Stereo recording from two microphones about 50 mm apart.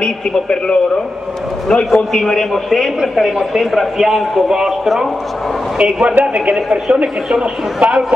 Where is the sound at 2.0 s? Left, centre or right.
Centre.